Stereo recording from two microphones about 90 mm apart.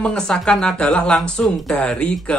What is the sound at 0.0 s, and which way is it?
Speech, 10° left (ahead or behind).